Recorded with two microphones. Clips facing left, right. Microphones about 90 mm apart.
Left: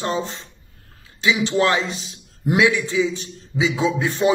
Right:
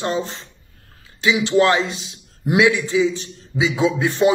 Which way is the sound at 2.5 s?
40° right (ahead or behind).